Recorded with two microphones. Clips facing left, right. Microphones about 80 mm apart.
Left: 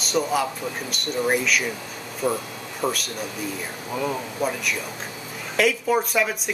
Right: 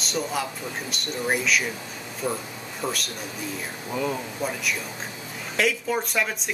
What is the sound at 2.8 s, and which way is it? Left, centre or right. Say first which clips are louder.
Speech: left 4 dB; left.